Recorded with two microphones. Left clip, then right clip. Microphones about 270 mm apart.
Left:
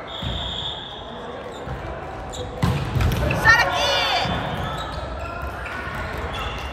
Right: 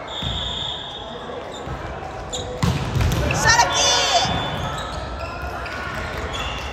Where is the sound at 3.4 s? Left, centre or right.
Centre.